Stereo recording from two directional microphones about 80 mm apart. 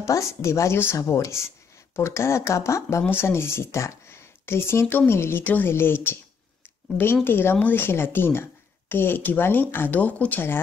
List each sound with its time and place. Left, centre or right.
0.0 s speech: left
7.2 s speech: left